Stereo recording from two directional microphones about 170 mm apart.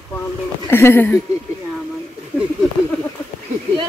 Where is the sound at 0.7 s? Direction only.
15° left (ahead or behind).